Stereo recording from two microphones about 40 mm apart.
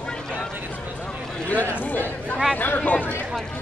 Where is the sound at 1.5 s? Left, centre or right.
Left.